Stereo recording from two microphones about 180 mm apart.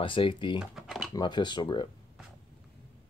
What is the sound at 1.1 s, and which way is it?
Speech, 25° left (ahead or behind).